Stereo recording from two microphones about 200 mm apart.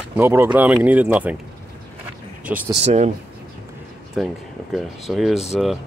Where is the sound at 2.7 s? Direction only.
30° right (ahead or behind).